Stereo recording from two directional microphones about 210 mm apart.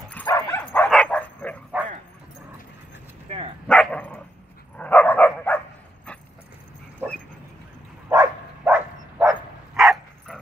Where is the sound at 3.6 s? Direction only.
5° left (ahead or behind).